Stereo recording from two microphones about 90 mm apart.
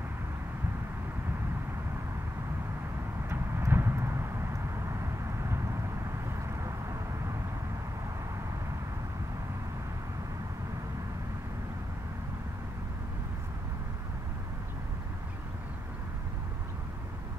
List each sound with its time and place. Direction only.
3.3 s vehicle: 25° right (ahead or behind)
6.5 s vehicle: 35° right (ahead or behind)